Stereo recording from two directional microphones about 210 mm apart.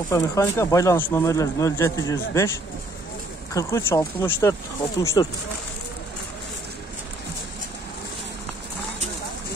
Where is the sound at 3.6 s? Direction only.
15° left (ahead or behind).